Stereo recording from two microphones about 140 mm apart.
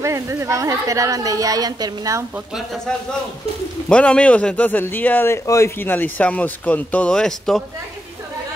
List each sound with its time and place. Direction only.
0.0 s a woman's voice: 20° right (ahead or behind)
3.9 s a man's voice: 10° left (ahead or behind)